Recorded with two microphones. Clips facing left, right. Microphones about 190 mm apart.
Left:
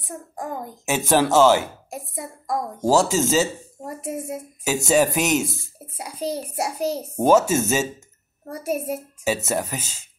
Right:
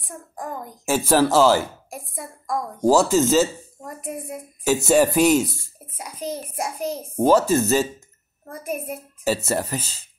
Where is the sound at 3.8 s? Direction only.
25° left (ahead or behind).